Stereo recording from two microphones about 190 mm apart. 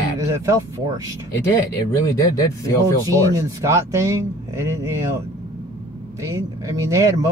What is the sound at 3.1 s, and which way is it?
Speech, 15° right (ahead or behind).